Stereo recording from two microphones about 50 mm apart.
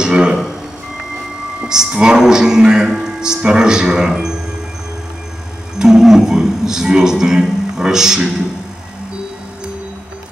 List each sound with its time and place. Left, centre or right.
0.0 s speech: centre
1.7 s speech: centre
5.8 s a man's voice: centre